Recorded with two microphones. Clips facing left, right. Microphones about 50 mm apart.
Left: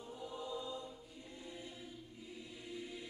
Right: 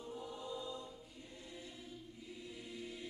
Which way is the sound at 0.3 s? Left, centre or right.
Left.